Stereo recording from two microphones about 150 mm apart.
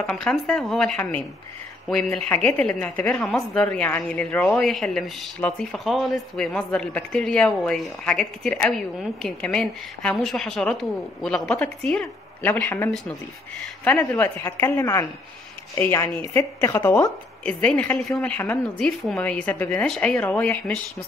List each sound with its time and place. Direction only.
0.0 s a woman's voice: 5° left (ahead or behind)
14.0 s a woman's voice: 20° left (ahead or behind)